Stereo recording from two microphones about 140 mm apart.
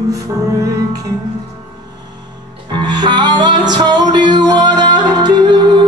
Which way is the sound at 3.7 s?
30° right (ahead or behind).